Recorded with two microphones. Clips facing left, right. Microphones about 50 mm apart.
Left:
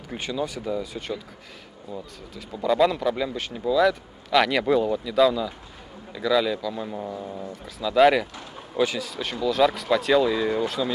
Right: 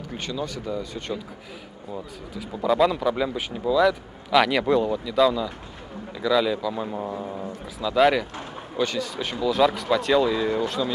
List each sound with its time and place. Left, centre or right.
0.1 s speech: centre
1.9 s a man's voice: centre
7.8 s a man's voice: centre